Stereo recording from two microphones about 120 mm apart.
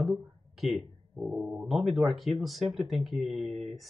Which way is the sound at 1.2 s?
10° right (ahead or behind).